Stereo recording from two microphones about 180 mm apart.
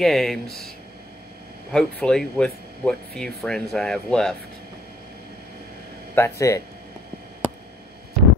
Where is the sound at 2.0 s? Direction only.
5° left (ahead or behind).